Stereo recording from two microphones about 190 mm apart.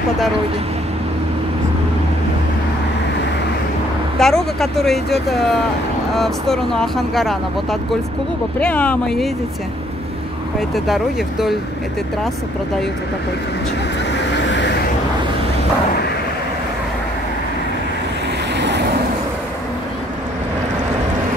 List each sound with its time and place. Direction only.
4.2 s speech: centre (ahead or behind)
8.5 s speech: 5° left (ahead or behind)
10.7 s speech: centre (ahead or behind)
14.1 s vehicle: 70° left (ahead or behind)
18.6 s vehicle: 65° right (ahead or behind)